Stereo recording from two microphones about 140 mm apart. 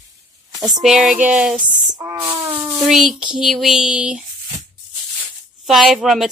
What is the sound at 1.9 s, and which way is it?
Speech, 25° right (ahead or behind).